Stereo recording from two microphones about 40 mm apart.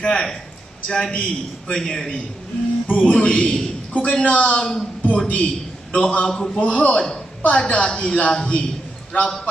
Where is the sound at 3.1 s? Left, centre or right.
Left.